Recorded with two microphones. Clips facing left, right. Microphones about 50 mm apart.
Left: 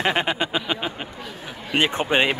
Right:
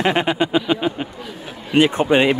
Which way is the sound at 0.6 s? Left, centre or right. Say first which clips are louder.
Right 7 dB; centre.